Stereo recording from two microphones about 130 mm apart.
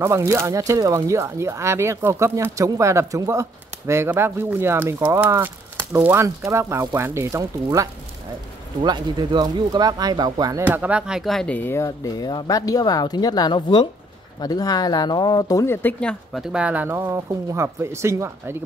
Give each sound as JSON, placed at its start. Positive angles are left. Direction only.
{"t": 0.0, "sound": "speech", "side_deg": -20}
{"t": 10.6, "sound": "speech", "side_deg": -10}
{"t": 16.5, "sound": "speech", "side_deg": -10}